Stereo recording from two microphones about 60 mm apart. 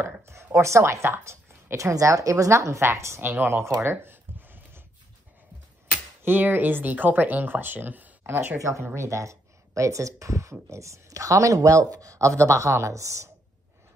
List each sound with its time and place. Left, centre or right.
0.0 s speech: right
2.8 s speech: right
3.2 s speech: right
3.8 s a sound: right
6.2 s speech: right
8.5 s speech: right